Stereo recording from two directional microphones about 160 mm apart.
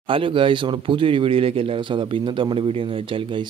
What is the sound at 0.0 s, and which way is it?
Speech, 30° right (ahead or behind).